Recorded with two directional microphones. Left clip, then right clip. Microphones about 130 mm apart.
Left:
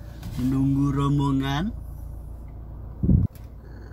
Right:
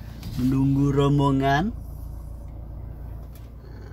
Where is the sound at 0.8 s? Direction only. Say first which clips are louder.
Right 4 dB; 10° right (ahead or behind).